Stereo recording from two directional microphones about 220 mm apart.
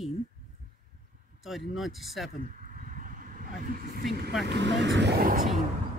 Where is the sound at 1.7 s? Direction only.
Centre (ahead or behind).